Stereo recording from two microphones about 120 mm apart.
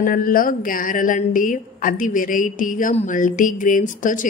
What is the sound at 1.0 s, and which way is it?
A woman's voice, 90° left.